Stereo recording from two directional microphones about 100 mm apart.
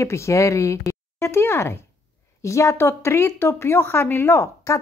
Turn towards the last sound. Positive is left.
turn(degrees=30)  # may be behind; listen again after turning